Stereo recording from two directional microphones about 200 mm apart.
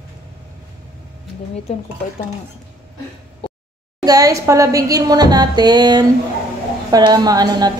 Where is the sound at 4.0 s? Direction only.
20° right (ahead or behind).